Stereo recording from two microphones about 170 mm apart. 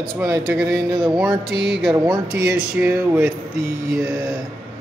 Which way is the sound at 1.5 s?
80° right.